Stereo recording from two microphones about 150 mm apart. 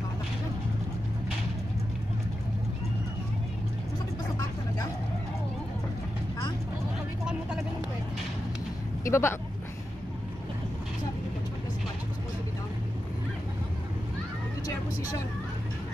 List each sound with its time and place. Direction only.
9.0 s speech: 15° left (ahead or behind)